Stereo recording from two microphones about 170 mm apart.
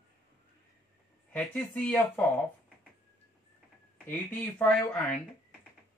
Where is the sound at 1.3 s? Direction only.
10° left (ahead or behind).